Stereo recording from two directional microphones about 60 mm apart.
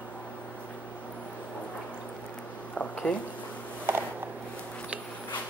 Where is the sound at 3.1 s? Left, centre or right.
Left.